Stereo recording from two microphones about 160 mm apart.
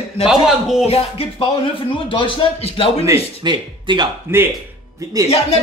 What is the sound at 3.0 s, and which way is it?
Speech, 25° right (ahead or behind).